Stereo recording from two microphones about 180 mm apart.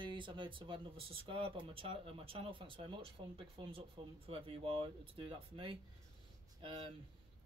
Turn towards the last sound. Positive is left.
turn(degrees=-25)  # may be behind; listen again after turning